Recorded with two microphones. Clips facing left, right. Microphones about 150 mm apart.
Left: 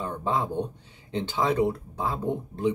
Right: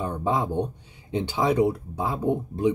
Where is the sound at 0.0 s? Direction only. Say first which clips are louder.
Right 2 dB; 15° right (ahead or behind).